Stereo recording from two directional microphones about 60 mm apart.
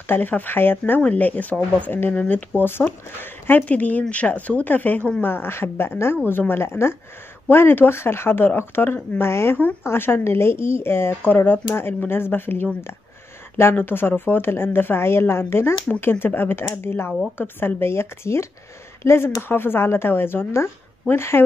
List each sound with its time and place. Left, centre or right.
0.0 s speech: left
13.7 s speech: left